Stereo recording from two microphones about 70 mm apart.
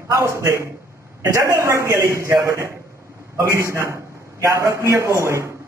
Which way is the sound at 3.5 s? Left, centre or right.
Right.